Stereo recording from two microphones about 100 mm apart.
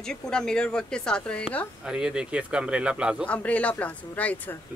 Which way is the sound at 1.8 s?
10° right (ahead or behind).